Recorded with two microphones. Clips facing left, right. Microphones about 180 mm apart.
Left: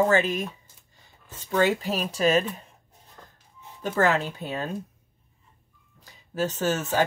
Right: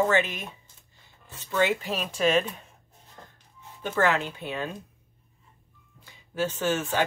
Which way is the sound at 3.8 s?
40° left (ahead or behind).